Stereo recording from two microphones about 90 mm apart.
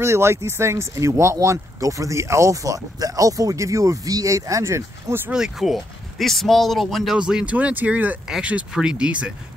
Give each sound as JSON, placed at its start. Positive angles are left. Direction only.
{"t": 0.0, "sound": "speech", "side_deg": -30}
{"t": 5.3, "sound": "speech", "side_deg": -5}
{"t": 7.2, "sound": "speech", "side_deg": -10}